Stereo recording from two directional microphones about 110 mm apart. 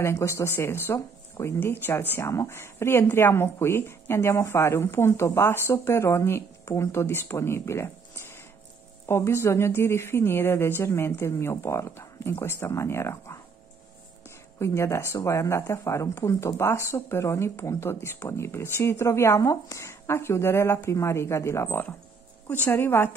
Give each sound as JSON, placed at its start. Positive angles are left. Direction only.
{"t": 0.0, "sound": "speech", "side_deg": 25}
{"t": 14.6, "sound": "speech", "side_deg": 25}